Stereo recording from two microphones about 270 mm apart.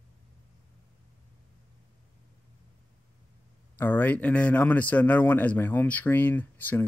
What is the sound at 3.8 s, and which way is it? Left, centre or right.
A man's voice, centre.